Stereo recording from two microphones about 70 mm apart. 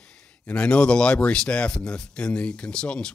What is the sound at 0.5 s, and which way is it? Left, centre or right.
Speech, centre.